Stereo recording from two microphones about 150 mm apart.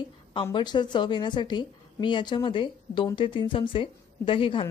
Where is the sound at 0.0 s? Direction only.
35° left (ahead or behind).